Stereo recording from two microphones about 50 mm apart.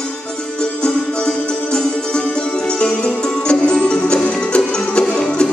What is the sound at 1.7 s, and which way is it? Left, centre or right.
Music, centre.